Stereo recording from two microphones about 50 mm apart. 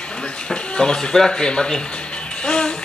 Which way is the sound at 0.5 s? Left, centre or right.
Centre.